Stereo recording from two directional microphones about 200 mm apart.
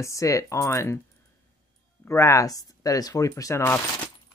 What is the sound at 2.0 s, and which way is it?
Speech, 15° left (ahead or behind).